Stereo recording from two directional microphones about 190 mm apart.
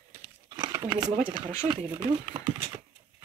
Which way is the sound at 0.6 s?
20° right (ahead or behind).